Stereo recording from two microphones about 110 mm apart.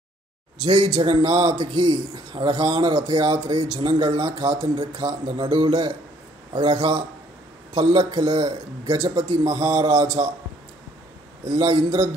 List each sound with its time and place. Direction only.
0.7 s a man's voice: 45° right (ahead or behind)
11.4 s a man's voice: 45° right (ahead or behind)